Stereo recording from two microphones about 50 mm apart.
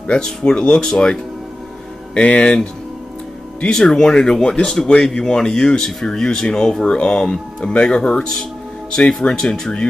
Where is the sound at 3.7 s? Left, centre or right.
Centre.